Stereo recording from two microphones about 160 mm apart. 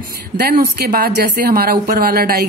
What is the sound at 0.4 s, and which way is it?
A woman's voice, 85° right.